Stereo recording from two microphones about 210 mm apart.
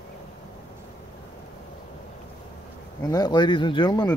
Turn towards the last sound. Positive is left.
turn(degrees=20)  # may be behind; listen again after turning